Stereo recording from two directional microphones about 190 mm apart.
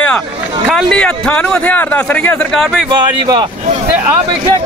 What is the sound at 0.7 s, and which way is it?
A man's voice, centre (ahead or behind).